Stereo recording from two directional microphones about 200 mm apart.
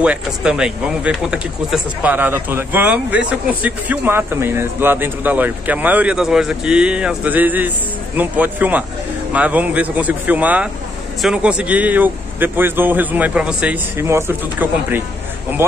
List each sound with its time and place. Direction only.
0.0 s speech: 5° right (ahead or behind)